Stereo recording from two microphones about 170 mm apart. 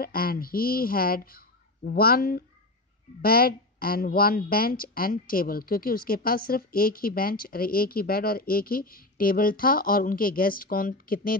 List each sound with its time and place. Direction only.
0.0 s speech: 60° left (ahead or behind)